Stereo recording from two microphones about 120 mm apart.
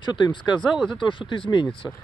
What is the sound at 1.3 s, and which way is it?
Speech, 40° left (ahead or behind).